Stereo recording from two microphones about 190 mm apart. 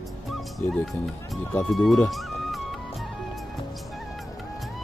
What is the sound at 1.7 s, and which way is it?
Speech, centre (ahead or behind).